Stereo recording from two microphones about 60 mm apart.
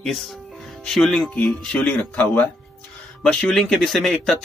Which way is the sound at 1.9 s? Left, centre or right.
Centre.